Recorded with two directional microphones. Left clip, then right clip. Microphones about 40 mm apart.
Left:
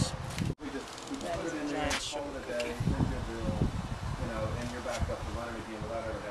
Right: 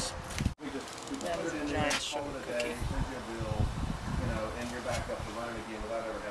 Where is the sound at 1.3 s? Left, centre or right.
Right.